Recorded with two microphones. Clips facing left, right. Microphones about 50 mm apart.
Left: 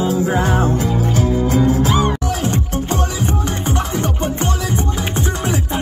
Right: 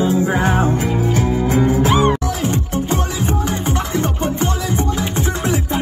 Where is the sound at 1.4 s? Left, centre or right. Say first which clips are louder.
Left 1 dB; right.